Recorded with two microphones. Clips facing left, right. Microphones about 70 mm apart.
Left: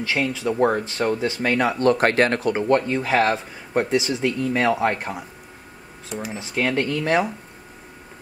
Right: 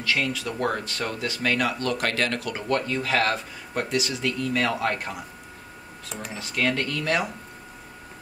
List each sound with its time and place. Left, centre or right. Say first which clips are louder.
0.0 s speech: left 3 dB; left
6.3 s speech: left 3 dB; left